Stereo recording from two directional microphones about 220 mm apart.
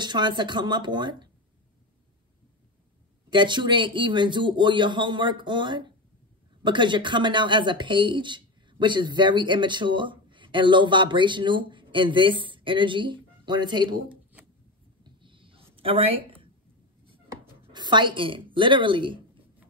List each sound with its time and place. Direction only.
0.0 s speech: 20° right (ahead or behind)
3.3 s speech: 20° right (ahead or behind)
15.0 s a sound: 20° right (ahead or behind)
17.7 s speech: 20° right (ahead or behind)